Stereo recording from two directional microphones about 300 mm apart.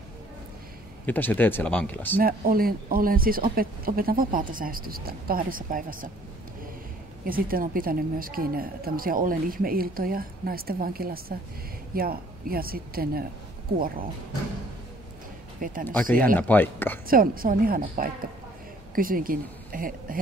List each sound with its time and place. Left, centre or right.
1.0 s speech: centre
2.1 s a woman's voice: right
7.2 s a woman's voice: right
15.6 s a sound: right
16.3 s speech: centre
17.1 s a woman's voice: right